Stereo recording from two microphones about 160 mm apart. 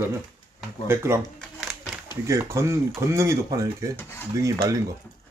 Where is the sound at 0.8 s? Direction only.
15° right (ahead or behind).